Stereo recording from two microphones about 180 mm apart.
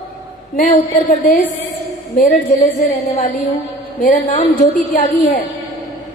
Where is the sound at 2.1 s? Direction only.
40° left (ahead or behind).